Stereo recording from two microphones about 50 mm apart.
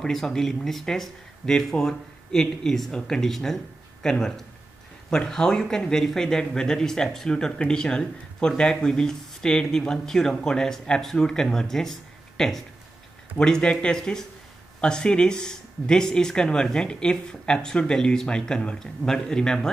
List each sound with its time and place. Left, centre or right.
0.0 s speech: centre
13.4 s speech: centre